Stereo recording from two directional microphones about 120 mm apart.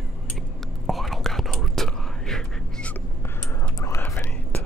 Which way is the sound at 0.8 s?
Centre (ahead or behind).